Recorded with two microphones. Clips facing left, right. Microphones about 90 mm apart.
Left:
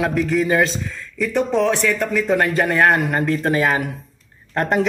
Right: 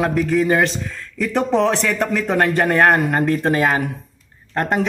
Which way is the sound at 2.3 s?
40° right (ahead or behind).